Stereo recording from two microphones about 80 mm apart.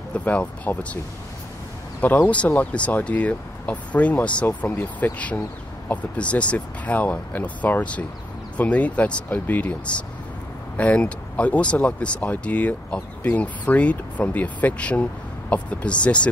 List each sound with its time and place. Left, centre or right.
0.1 s speech: centre
2.0 s speech: centre